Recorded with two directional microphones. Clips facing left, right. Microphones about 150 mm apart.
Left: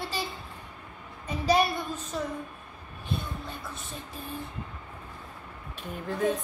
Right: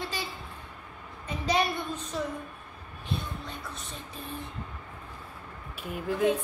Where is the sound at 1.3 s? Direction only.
5° left (ahead or behind).